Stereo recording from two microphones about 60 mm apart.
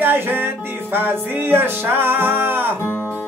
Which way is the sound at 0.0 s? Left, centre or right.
Right.